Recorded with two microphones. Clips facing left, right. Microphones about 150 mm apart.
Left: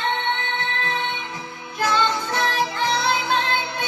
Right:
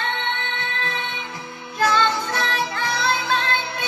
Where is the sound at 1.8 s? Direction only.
15° left (ahead or behind).